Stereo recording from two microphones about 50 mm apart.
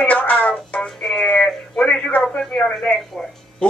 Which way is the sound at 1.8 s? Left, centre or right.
Left.